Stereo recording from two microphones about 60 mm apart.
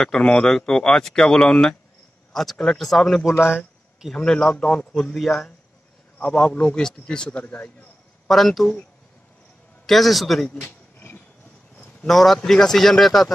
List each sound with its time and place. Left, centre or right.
0.0 s speech: centre
4.6 s a man's voice: centre
5.1 s speech: centre
6.1 s a man's voice: centre
7.4 s a man's voice: left
8.3 s speech: centre
9.8 s speech: centre
10.5 s wild animals: left
12.1 s speech: centre